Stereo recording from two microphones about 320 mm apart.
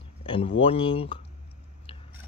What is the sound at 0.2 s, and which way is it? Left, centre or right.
A man's voice, centre.